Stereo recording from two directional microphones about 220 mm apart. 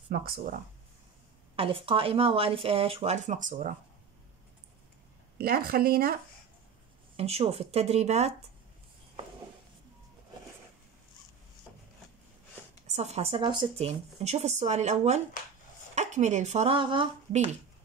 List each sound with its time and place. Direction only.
0.1 s speech: 40° right (ahead or behind)
1.6 s speech: 25° right (ahead or behind)
5.4 s speech: 45° right (ahead or behind)
7.2 s speech: 30° right (ahead or behind)
12.8 s speech: 30° right (ahead or behind)